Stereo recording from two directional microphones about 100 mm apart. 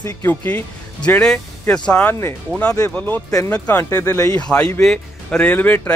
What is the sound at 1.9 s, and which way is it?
Speech, 15° left (ahead or behind).